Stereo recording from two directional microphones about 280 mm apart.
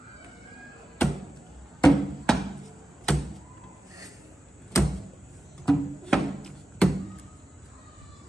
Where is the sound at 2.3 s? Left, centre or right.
Centre.